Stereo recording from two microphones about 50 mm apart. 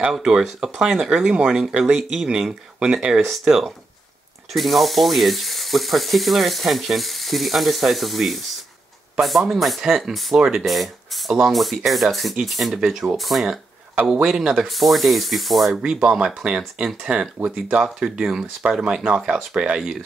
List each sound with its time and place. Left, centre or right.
0.1 s speech: centre
4.5 s ratchet: centre
14.2 s speech: centre
14.7 s ratchet: centre
15.8 s speech: centre